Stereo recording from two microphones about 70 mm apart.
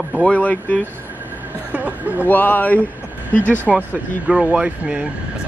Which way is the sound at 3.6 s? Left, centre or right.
Centre.